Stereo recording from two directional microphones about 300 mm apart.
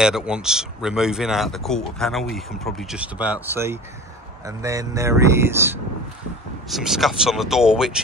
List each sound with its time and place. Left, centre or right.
0.0 s speech: centre